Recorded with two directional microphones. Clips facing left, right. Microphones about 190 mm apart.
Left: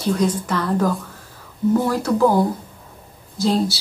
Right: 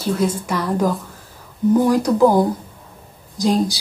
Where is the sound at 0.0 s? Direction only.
5° right (ahead or behind).